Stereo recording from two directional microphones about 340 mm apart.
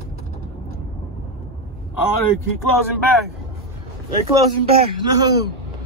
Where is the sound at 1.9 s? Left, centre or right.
Left.